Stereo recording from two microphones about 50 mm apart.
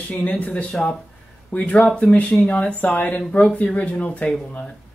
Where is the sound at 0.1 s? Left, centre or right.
Left.